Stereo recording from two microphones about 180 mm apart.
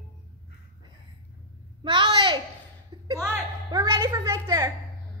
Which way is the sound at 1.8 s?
25° right (ahead or behind).